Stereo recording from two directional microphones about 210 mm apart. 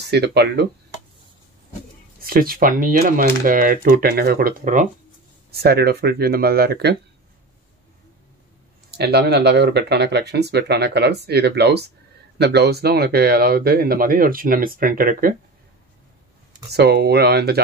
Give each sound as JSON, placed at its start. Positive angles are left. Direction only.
{"t": 0.0, "sound": "speech", "side_deg": -50}
{"t": 2.2, "sound": "speech", "side_deg": -45}
{"t": 8.9, "sound": "speech", "side_deg": -50}
{"t": 16.7, "sound": "speech", "side_deg": -50}